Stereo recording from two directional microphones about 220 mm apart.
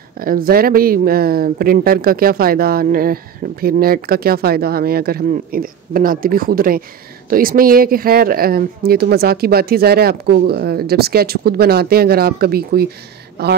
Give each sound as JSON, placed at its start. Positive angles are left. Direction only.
{"t": 0.2, "sound": "speech", "side_deg": -40}